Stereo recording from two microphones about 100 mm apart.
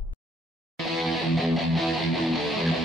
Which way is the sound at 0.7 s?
Centre (ahead or behind).